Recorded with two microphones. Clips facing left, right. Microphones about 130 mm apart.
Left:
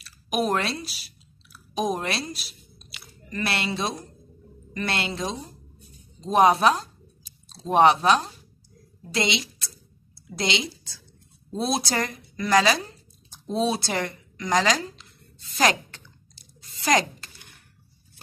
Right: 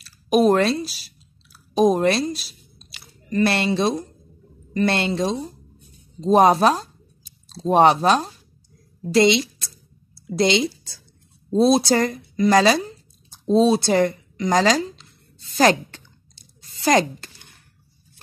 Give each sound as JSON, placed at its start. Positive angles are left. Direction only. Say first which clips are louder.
{"t": 0.0, "sound": "a sound", "louder": "right 9 dB", "side_deg": -35}
{"t": 0.7, "sound": "speech", "louder": "right 8 dB", "side_deg": -35}
{"t": 2.9, "sound": "chewing", "louder": "right 10 dB", "side_deg": -30}
{"t": 4.7, "sound": "a woman's voice", "louder": "right 8 dB", "side_deg": -35}